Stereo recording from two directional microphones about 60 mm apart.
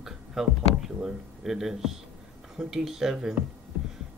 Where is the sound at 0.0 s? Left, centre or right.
Centre.